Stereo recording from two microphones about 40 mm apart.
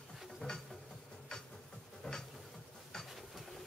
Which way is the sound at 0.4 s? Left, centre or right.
Left.